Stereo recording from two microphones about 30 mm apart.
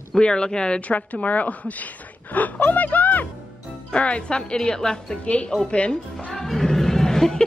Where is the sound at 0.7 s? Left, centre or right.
Left.